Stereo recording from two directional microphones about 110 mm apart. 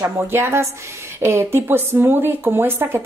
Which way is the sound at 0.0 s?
25° right (ahead or behind).